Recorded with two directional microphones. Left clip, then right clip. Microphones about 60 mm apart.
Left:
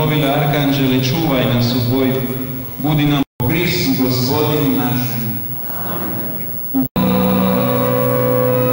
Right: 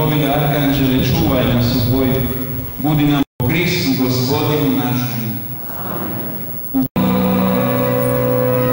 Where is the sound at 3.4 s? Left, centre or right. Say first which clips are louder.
Even; centre.